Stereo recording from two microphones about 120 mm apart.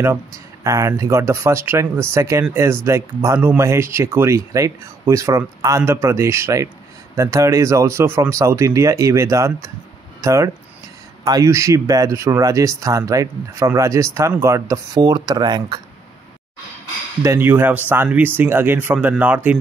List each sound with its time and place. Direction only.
0.0 s speech: 25° right (ahead or behind)
17.2 s speech: 20° right (ahead or behind)